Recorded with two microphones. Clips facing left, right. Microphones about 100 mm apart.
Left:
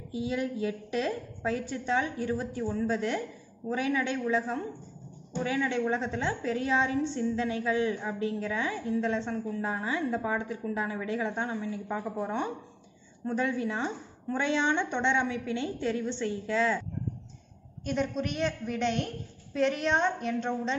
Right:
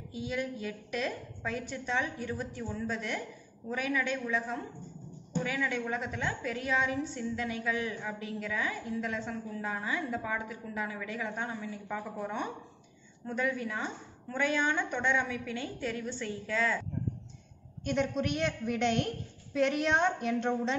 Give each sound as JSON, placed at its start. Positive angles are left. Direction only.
{"t": 0.1, "sound": "a woman's voice", "side_deg": 25}
{"t": 17.8, "sound": "a woman's voice", "side_deg": 0}